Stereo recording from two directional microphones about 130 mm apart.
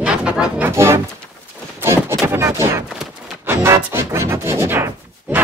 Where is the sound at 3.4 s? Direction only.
20° right (ahead or behind).